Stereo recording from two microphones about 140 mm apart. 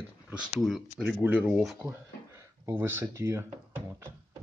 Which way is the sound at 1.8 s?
20° right (ahead or behind).